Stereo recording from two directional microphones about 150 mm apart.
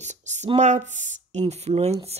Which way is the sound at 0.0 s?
50° right (ahead or behind).